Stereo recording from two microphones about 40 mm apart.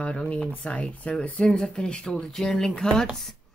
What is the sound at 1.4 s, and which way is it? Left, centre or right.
Speech, centre.